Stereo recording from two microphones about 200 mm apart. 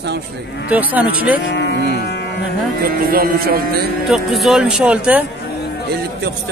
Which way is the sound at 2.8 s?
45° right (ahead or behind).